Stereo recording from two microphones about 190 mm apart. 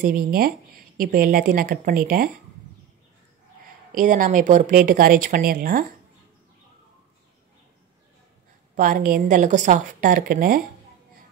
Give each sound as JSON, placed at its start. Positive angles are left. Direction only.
{"t": 0.0, "sound": "speech", "side_deg": -50}
{"t": 3.9, "sound": "speech", "side_deg": -45}
{"t": 8.7, "sound": "speech", "side_deg": -45}